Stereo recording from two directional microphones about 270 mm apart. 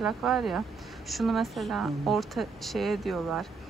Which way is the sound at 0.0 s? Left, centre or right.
Centre.